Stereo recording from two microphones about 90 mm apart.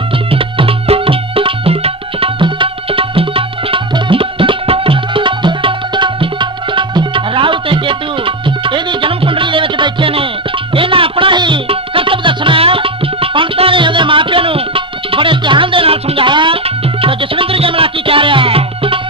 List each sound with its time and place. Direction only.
0.3 s music: 90° right; by 16.5 s 70° right (ahead or behind)
17.0 s music: 90° right